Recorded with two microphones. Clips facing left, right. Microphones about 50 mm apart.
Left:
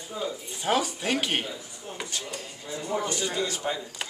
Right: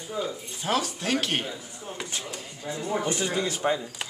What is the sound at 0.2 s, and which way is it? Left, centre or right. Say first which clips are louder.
Speech: left 1 dB; centre.